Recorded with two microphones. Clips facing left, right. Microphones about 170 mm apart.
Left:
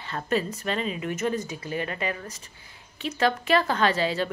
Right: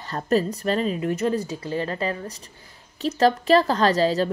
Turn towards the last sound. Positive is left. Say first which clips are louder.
# right 4 dB
turn(degrees=-40)  # may be behind; listen again after turning